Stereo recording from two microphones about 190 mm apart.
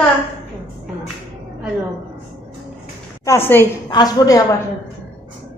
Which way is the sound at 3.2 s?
15° left (ahead or behind).